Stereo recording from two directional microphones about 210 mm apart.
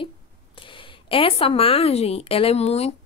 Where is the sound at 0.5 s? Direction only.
25° left (ahead or behind).